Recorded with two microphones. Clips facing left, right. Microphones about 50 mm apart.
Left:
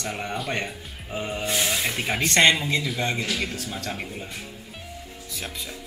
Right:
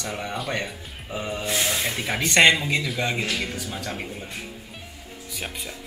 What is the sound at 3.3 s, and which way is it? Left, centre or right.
Speech, centre.